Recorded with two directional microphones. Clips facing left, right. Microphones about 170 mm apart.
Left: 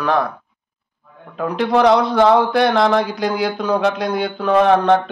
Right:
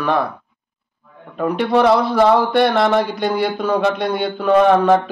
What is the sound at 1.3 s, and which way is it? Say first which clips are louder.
Speech: right 1 dB; centre (ahead or behind).